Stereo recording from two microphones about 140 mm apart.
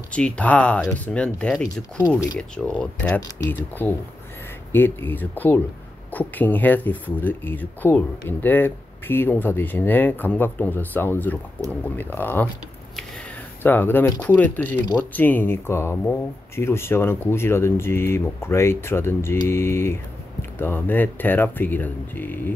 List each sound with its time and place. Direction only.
0.1 s speech: 10° left (ahead or behind)
2.0 s speech: 20° left (ahead or behind)
2.3 s speech: 5° left (ahead or behind)
13.6 s speech: 15° left (ahead or behind)